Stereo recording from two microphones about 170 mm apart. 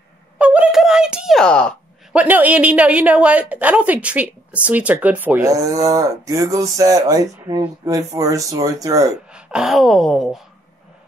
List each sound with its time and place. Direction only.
0.4 s a sound: 5° right (ahead or behind)
2.1 s a woman's voice: 10° right (ahead or behind)
9.3 s speech: 5° right (ahead or behind)